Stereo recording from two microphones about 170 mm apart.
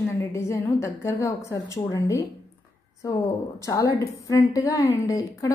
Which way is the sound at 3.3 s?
20° left (ahead or behind).